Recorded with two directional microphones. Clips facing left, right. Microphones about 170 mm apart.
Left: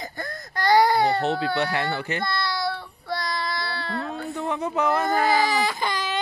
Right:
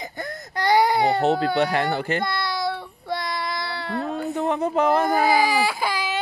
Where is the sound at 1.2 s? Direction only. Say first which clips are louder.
Right 4 dB; 40° right (ahead or behind).